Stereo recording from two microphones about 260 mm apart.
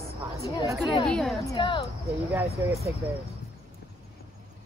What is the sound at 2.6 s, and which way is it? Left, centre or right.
Speech, centre.